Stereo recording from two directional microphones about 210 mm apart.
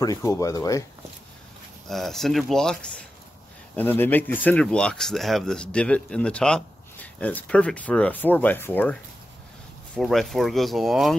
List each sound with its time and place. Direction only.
0.0 s speech: 15° left (ahead or behind)
1.9 s speech: centre (ahead or behind)
9.9 s speech: centre (ahead or behind)